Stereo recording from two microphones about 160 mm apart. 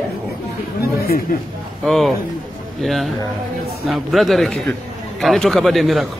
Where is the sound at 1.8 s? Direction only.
Centre (ahead or behind).